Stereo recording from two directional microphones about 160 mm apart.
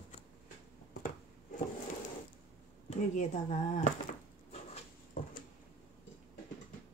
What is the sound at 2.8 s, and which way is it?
Speech, 50° left (ahead or behind).